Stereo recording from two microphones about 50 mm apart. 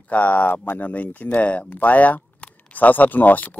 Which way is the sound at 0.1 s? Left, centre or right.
Left.